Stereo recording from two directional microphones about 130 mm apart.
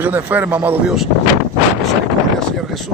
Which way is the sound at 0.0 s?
15° right (ahead or behind).